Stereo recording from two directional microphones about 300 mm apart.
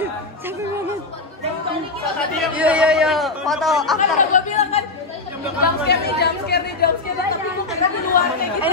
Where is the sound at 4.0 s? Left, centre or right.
Left.